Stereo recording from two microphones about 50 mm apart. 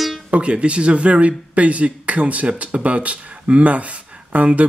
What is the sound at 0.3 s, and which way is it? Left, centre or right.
Speech, right.